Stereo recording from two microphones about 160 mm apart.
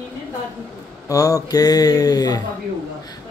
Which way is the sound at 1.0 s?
20° left (ahead or behind).